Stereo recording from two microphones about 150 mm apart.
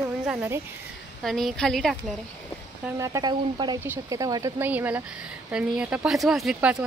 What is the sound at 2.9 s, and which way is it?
Speech, 20° right (ahead or behind).